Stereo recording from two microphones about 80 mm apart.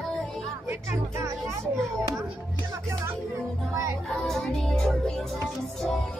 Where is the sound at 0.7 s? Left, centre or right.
Right.